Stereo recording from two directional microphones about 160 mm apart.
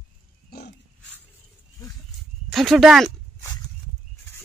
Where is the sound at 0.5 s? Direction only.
80° left.